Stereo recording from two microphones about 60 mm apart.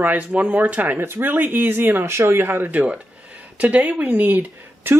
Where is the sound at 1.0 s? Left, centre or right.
Right.